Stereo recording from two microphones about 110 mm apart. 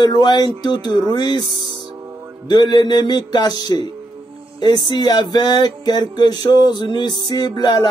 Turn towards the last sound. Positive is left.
turn(degrees=40)  # may be behind; listen again after turning